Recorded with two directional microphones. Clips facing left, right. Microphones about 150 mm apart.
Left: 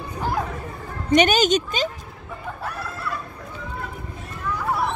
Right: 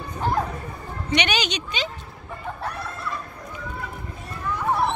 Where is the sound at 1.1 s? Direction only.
45° left (ahead or behind).